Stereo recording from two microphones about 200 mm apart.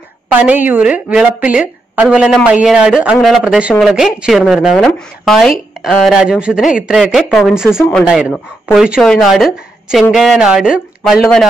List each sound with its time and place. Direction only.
0.3 s a woman's voice: 10° right (ahead or behind)